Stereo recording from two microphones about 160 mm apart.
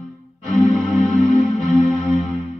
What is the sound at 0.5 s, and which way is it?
Music, 5° left (ahead or behind).